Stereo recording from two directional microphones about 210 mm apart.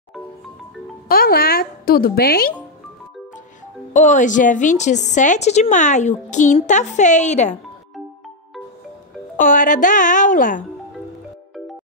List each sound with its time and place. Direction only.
1.0 s speech: 45° left (ahead or behind)
3.9 s a woman's voice: 35° left (ahead or behind)
9.4 s a woman's voice: 40° left (ahead or behind)